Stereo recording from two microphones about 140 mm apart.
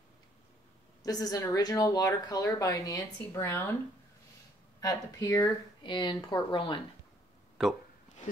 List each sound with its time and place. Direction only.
1.0 s a woman's voice: 25° left (ahead or behind)
4.7 s a woman's voice: 25° left (ahead or behind)
5.9 s speech: 35° left (ahead or behind)